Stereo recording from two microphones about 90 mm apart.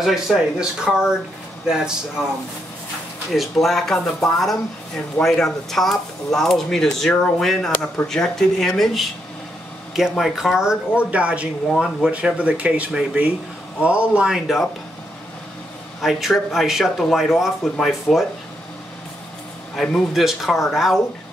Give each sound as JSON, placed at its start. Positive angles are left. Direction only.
{"t": 0.0, "sound": "speech", "side_deg": -5}
{"t": 3.3, "sound": "speech", "side_deg": 0}
{"t": 7.7, "sound": "speech", "side_deg": 20}
{"t": 8.1, "sound": "speech", "side_deg": 5}
{"t": 16.0, "sound": "speech", "side_deg": -5}
{"t": 19.7, "sound": "speech", "side_deg": 0}